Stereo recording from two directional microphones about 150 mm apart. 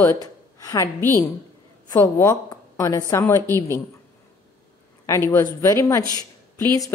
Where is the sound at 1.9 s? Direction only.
15° left (ahead or behind).